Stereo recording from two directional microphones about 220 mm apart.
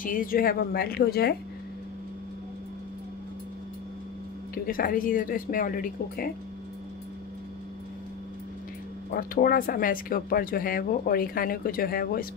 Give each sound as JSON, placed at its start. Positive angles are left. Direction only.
{"t": 0.0, "sound": "a woman's voice", "side_deg": 40}
{"t": 4.6, "sound": "speech", "side_deg": 40}
{"t": 9.1, "sound": "speech", "side_deg": 40}